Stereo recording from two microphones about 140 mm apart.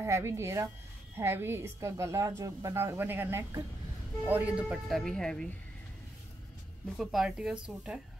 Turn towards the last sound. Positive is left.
turn(degrees=-5)  # may be behind; listen again after turning